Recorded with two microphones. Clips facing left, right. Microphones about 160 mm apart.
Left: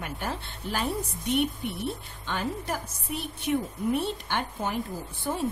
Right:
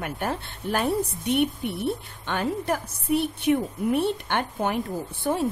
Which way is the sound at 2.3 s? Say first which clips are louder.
Right 5 dB; 60° right (ahead or behind).